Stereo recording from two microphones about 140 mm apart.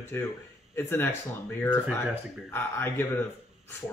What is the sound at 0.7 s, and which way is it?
Speech, 15° left (ahead or behind).